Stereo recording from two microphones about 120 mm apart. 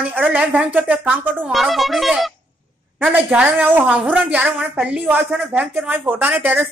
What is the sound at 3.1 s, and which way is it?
Speech, 15° right (ahead or behind).